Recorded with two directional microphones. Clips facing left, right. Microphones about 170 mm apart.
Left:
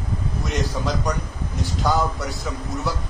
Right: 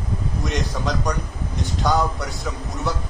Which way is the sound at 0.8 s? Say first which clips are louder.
Even; centre (ahead or behind).